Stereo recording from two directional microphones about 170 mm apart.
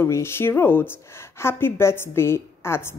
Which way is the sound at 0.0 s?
15° left (ahead or behind).